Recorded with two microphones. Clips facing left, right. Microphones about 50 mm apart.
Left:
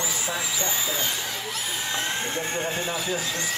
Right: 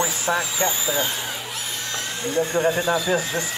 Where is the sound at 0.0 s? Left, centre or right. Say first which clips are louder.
Right 6 dB; right.